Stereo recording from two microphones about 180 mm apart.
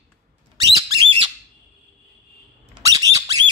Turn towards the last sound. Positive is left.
turn(degrees=-20)  # may be behind; listen again after turning